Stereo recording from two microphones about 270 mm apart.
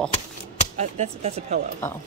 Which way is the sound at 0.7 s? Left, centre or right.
Right.